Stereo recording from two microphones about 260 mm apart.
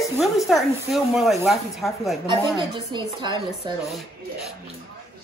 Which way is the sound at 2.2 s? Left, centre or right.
Centre.